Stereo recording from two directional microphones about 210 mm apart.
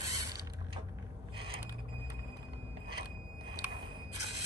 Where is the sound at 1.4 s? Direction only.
20° right (ahead or behind).